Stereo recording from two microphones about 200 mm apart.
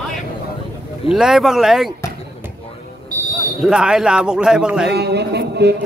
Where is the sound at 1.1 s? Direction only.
Centre (ahead or behind).